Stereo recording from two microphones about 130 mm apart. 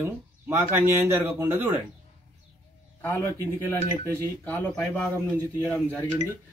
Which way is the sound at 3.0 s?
15° left (ahead or behind).